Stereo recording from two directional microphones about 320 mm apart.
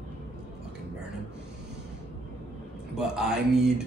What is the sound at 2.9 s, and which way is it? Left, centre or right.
Speech, centre.